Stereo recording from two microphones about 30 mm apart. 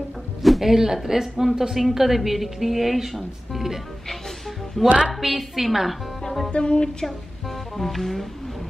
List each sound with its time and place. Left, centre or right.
0.4 s music: centre
0.7 s a woman's voice: centre
1.8 s a woman's voice: centre
4.8 s music: centre
5.2 s a woman's voice: centre
6.5 s music: left
7.7 s music: centre